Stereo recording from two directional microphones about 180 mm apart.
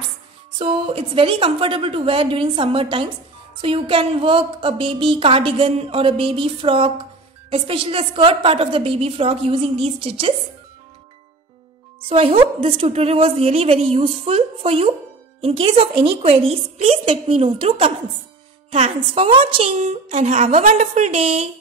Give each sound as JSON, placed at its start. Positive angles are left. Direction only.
{"t": 0.6, "sound": "a woman's voice", "side_deg": -30}
{"t": 12.1, "sound": "a woman's voice", "side_deg": -30}